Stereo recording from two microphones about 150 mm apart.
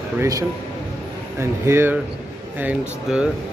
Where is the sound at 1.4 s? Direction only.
15° right (ahead or behind).